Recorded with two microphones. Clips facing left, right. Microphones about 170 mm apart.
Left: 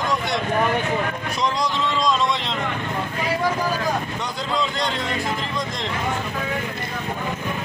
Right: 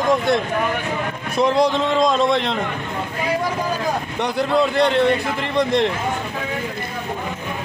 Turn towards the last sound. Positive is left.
turn(degrees=-65)  # may be behind; listen again after turning